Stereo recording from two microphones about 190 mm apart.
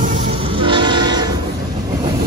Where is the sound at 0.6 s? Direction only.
25° right (ahead or behind).